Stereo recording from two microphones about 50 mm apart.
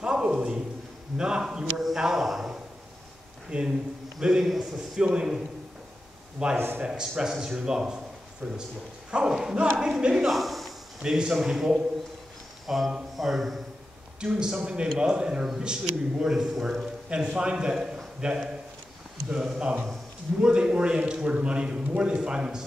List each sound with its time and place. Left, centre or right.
0.0 s a sound: centre
1.1 s a man's voice: centre
3.4 s a man's voice: centre
6.4 s a man's voice: centre
11.0 s a man's voice: centre
13.1 s mantra: centre
14.2 s a man's voice: centre